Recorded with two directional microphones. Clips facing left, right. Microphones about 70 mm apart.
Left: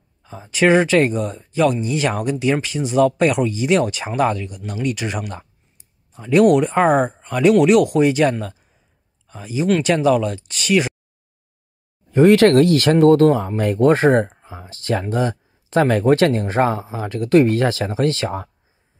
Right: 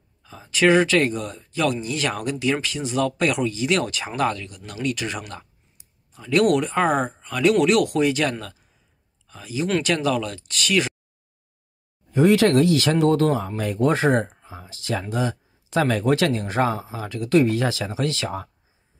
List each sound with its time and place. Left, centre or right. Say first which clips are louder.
0.2 s speech: left 2 dB; left
12.1 s speech: left 5 dB; left